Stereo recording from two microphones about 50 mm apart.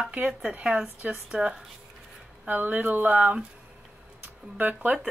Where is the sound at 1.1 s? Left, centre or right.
Centre.